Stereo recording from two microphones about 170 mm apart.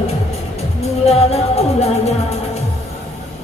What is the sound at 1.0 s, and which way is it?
Music, 40° left (ahead or behind).